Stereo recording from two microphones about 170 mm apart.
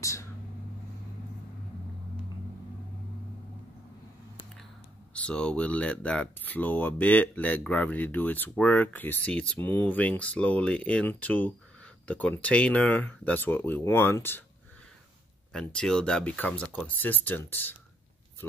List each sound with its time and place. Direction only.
0.0 s a sound: 20° left (ahead or behind)
5.1 s speech: 5° left (ahead or behind)
15.5 s speech: 5° left (ahead or behind)